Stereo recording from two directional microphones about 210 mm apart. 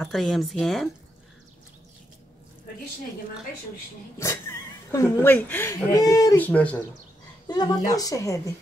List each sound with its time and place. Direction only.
0.0 s speech: centre (ahead or behind)
4.2 s speech: 15° left (ahead or behind)
7.4 s speech: 20° left (ahead or behind)